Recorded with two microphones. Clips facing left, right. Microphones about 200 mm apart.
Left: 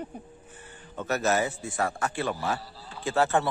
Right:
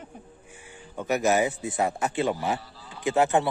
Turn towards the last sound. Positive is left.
turn(degrees=-15)  # may be behind; listen again after turning